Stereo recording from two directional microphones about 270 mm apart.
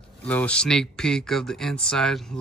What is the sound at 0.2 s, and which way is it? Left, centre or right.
Speech, centre.